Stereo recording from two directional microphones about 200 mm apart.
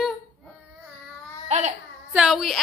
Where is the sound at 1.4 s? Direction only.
35° right (ahead or behind).